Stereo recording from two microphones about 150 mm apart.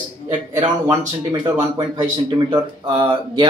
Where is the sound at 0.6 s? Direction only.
30° right (ahead or behind).